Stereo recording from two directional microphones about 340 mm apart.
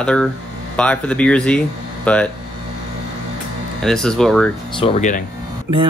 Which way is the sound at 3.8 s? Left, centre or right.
Centre.